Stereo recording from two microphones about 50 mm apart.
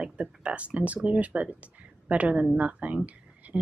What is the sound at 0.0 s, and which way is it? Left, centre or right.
A woman's voice, right.